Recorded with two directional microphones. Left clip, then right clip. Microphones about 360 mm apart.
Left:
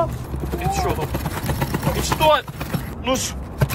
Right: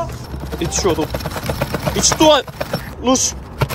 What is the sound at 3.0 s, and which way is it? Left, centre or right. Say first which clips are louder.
Power windows: right 6 dB; centre.